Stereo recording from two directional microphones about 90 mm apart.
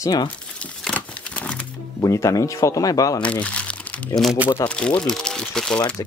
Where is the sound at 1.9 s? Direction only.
35° left (ahead or behind).